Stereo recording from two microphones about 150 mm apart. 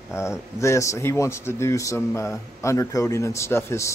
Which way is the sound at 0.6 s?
20° left (ahead or behind).